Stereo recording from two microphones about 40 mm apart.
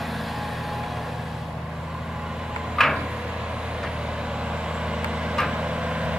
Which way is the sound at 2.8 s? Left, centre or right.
Centre.